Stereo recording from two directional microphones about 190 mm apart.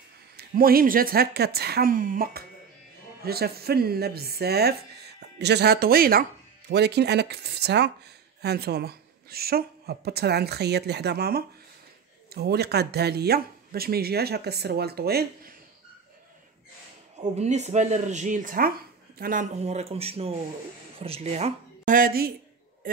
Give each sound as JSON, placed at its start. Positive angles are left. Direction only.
{"t": 0.4, "sound": "a woman's voice", "side_deg": -50}
{"t": 6.7, "sound": "speech", "side_deg": -60}
{"t": 17.2, "sound": "speech", "side_deg": -35}
{"t": 19.6, "sound": "speech", "side_deg": -35}